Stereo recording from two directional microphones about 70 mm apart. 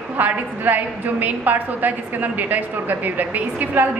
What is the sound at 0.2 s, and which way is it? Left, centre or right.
A woman's voice, right.